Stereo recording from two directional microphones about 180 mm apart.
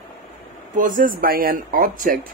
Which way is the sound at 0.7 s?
50° right (ahead or behind).